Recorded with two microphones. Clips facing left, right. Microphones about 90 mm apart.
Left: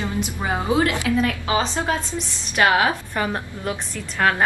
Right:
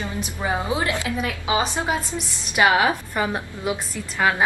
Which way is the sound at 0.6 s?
20° right (ahead or behind).